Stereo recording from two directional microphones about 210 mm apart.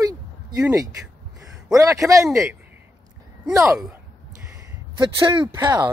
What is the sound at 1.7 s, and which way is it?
Speech, 15° right (ahead or behind).